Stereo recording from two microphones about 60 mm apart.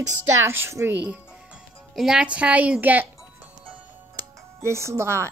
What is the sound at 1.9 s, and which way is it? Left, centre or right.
Speech, centre.